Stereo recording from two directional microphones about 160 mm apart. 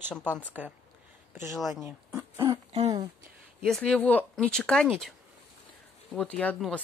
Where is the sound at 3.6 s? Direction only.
5° left (ahead or behind).